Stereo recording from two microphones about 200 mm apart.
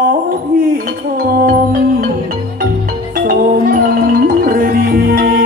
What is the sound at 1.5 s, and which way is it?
Music, 45° right (ahead or behind).